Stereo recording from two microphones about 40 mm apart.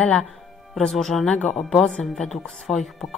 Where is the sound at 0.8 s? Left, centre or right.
Centre.